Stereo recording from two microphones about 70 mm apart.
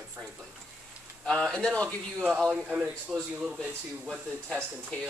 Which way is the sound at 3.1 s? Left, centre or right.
Centre.